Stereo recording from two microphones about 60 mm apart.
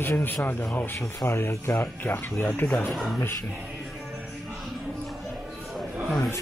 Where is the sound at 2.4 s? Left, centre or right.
Left.